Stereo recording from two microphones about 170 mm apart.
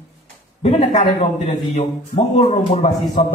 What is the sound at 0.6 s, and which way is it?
A man's voice, 35° left (ahead or behind).